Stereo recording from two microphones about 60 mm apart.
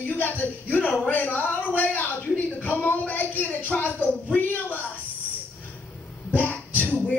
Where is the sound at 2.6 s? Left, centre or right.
Left.